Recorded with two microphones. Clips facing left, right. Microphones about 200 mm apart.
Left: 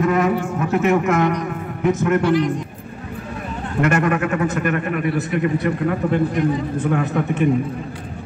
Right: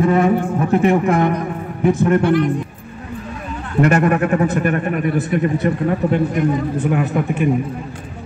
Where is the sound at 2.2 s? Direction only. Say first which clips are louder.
Right 2 dB; 55° right (ahead or behind).